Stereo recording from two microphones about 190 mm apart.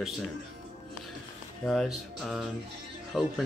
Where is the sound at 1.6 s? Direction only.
Centre (ahead or behind).